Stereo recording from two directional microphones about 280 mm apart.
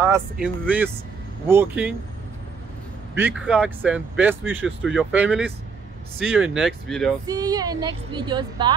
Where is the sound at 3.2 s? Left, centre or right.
Centre.